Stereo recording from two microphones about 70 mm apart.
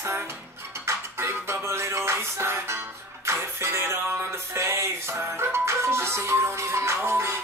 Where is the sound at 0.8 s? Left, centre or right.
Right.